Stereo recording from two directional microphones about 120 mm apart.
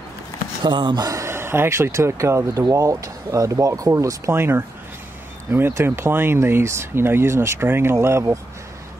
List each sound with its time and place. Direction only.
0.7 s speech: 40° right (ahead or behind); by 8.4 s 25° right (ahead or behind)